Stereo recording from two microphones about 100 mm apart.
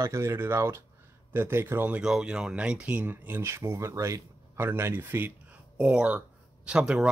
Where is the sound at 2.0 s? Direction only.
5° right (ahead or behind); by 5.3 s 25° right (ahead or behind).